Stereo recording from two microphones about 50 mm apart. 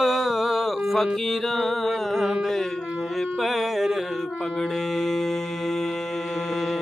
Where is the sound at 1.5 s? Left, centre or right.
Centre.